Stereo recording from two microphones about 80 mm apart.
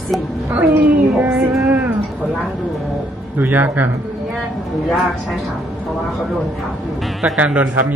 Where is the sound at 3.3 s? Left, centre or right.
Right.